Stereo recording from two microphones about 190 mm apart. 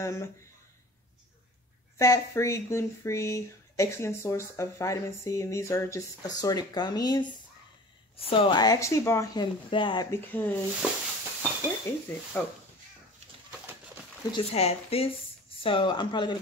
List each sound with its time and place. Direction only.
0.0 s speech: 15° left (ahead or behind)
2.0 s speech: 15° left (ahead or behind)
10.1 s speech: 10° left (ahead or behind)
10.8 s a sound: 5° right (ahead or behind)
12.4 s speech: 5° left (ahead or behind)
14.3 s speech: 35° left (ahead or behind)